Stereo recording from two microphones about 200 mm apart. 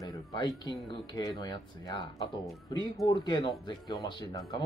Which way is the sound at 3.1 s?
20° left (ahead or behind).